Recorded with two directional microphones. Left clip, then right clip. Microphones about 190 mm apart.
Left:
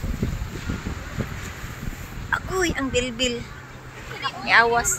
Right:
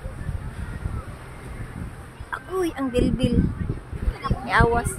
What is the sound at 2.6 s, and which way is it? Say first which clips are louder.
Speech: right 2 dB; 15° right (ahead or behind).